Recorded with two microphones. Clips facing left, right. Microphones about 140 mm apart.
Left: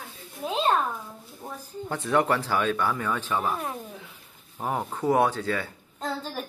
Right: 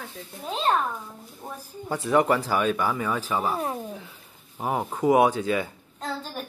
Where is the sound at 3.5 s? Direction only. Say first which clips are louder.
Right 3 dB; 25° right (ahead or behind).